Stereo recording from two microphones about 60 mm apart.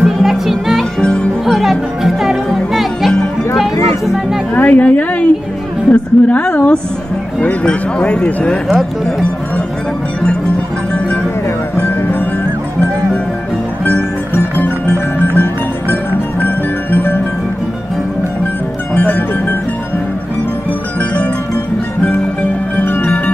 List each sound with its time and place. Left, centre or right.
0.0 s music: centre
4.6 s a sound: left
5.9 s a woman's voice: left
13.8 s music: left
16.4 s music: left
18.9 s music: left
22.8 s music: left